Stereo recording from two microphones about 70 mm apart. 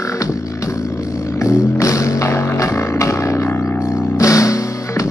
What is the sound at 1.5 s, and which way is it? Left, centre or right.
Music, left.